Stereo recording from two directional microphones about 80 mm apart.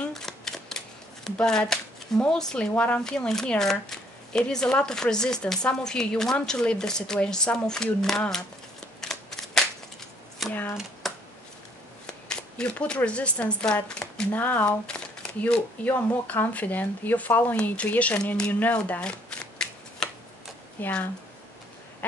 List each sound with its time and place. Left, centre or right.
0.0 s shuffling cards: centre
2.7 s speech: centre
3.0 s speech: centre
9.0 s scissors: centre
10.4 s speech: centre
10.8 s typewriter: centre
12.1 s speech: centre
14.3 s speech: left
20.0 s shuffling cards: centre
20.8 s speech: left